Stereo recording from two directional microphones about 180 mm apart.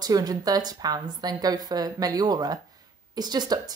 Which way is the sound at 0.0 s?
20° right (ahead or behind).